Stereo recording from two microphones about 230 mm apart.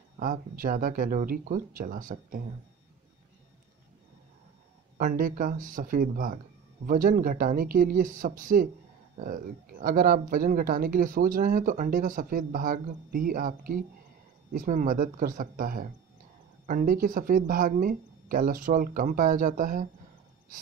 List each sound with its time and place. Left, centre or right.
0.2 s speech: right
4.9 s speech: right